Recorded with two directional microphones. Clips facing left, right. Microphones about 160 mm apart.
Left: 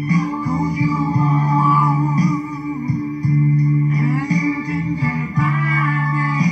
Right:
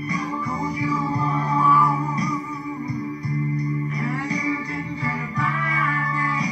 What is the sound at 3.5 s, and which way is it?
Music, 35° left (ahead or behind).